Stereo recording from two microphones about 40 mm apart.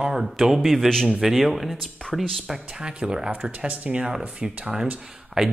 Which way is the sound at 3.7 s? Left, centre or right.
Right.